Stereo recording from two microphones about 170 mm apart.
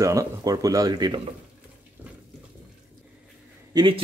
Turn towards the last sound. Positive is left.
turn(degrees=-25)  # may be behind; listen again after turning